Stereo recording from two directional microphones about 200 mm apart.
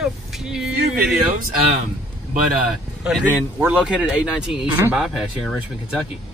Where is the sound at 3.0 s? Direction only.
5° right (ahead or behind).